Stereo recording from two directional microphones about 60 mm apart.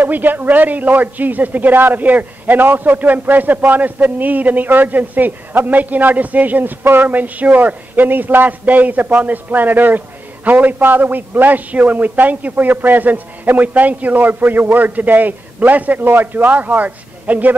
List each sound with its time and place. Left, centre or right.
0.0 s a man's voice: right